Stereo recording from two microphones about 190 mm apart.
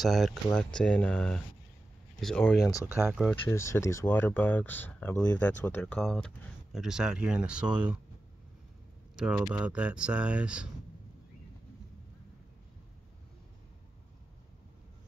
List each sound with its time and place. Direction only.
0.0 s speech: centre (ahead or behind)
3.4 s speech: 15° left (ahead or behind); by 8.0 s 5° right (ahead or behind)
9.1 s speech: 5° right (ahead or behind)